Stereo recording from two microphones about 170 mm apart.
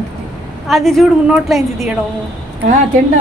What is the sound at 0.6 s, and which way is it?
A woman's voice, centre (ahead or behind).